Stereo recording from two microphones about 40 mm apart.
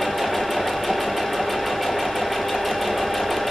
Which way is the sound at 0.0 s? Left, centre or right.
Centre.